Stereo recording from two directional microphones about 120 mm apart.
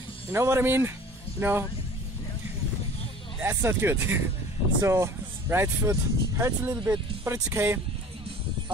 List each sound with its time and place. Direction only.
0.3 s speech: 20° right (ahead or behind)
3.3 s speech: 15° right (ahead or behind)